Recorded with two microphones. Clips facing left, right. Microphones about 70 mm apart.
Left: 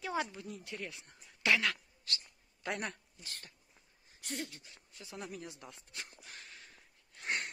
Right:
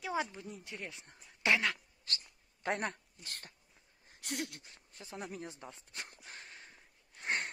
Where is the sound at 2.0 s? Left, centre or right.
Right.